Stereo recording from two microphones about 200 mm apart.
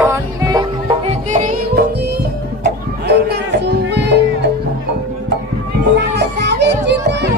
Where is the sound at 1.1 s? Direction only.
35° right (ahead or behind).